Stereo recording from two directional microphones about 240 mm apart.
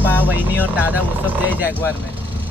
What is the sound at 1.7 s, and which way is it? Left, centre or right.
Speech, centre.